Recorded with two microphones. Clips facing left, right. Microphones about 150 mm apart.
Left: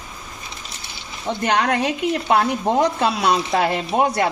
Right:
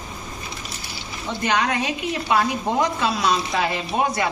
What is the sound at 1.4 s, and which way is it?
A woman's voice, 55° left (ahead or behind).